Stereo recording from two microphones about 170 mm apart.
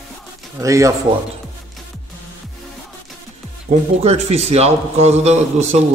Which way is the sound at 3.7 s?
40° right (ahead or behind).